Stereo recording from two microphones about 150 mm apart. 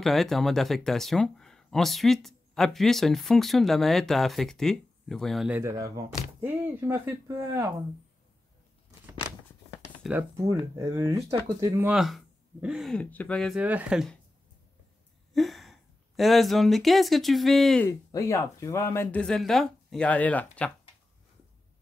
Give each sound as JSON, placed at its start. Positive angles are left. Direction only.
{"t": 0.0, "sound": "speech", "side_deg": 0}
{"t": 5.5, "sound": "speech", "side_deg": -20}
{"t": 10.0, "sound": "speech", "side_deg": 0}
{"t": 10.8, "sound": "speech", "side_deg": -20}
{"t": 11.9, "sound": "speech", "side_deg": 0}
{"t": 13.6, "sound": "speech", "side_deg": -10}
{"t": 15.3, "sound": "speech", "side_deg": 0}
{"t": 17.8, "sound": "speech", "side_deg": 20}
{"t": 19.1, "sound": "speech", "side_deg": 5}